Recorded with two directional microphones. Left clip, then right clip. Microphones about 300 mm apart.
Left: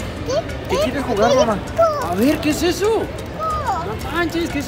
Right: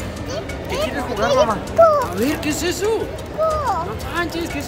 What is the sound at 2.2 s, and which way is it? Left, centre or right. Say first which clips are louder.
Speech: left 3 dB; centre.